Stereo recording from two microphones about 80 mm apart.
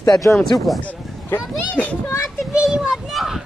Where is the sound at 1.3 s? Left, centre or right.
Centre.